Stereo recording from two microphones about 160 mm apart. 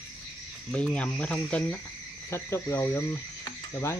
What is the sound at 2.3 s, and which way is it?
Frog, 15° left (ahead or behind).